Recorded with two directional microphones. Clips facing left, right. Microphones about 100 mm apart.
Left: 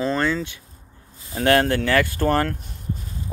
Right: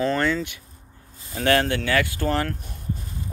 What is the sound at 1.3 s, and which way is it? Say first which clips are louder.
Speech: left 3 dB; 45° left (ahead or behind).